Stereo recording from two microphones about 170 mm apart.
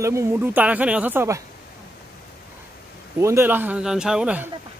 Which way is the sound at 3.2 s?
15° right (ahead or behind).